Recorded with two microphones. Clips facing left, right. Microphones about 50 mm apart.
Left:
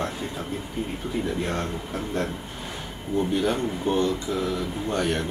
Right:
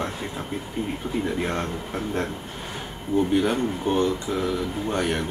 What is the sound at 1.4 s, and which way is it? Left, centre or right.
Speech, centre.